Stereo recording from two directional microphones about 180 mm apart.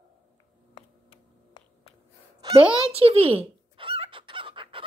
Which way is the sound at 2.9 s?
35° right (ahead or behind).